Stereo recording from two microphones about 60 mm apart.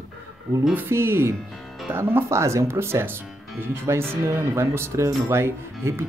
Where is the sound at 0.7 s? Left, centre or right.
Right.